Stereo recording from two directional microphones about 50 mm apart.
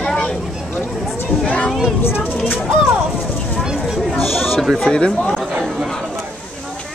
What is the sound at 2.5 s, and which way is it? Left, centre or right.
Speech, centre.